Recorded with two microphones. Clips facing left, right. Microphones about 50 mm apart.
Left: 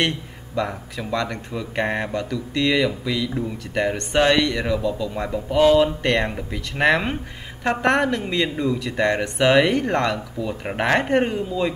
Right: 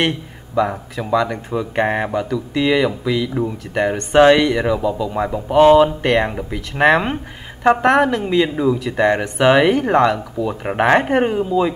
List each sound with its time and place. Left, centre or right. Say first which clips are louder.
0.6 s speech: right 6 dB; centre
1.5 s speech: right 5 dB; centre
5.5 s speech: right 6 dB; right
5.8 s speech: right 5 dB; centre